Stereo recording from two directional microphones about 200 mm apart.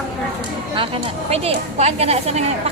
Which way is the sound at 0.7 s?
30° right (ahead or behind).